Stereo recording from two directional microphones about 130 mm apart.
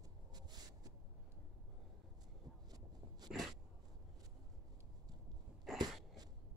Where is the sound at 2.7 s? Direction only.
30° right (ahead or behind).